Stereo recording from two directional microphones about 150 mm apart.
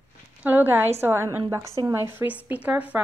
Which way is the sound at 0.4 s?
10° right (ahead or behind).